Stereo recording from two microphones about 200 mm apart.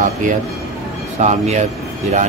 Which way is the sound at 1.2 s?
35° right (ahead or behind).